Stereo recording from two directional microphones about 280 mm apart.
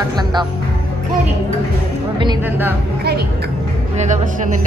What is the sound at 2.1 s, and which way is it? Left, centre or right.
Speech, centre.